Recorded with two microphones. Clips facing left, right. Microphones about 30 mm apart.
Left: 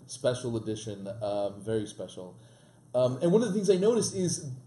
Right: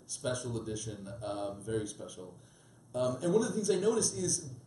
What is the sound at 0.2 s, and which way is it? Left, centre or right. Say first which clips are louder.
A man's voice: left 7 dB; left.